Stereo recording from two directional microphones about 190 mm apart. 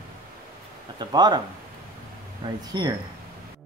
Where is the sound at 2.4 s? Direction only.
25° right (ahead or behind).